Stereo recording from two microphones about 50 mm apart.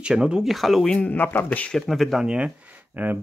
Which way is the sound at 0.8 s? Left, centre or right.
Centre.